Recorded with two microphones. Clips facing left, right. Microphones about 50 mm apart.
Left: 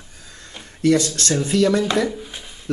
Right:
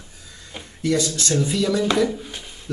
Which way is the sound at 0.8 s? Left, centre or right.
Left.